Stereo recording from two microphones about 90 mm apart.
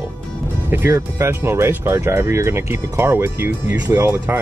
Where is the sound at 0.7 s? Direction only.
25° right (ahead or behind).